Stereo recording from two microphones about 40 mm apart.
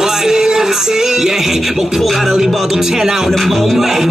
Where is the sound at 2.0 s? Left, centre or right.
Centre.